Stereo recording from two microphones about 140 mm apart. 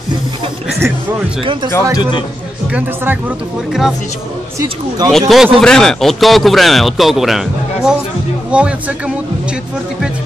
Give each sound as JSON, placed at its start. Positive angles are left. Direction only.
{"t": 1.4, "sound": "speech", "side_deg": -35}
{"t": 2.7, "sound": "speech", "side_deg": -10}
{"t": 4.6, "sound": "speech", "side_deg": -25}
{"t": 5.3, "sound": "speech", "side_deg": 0}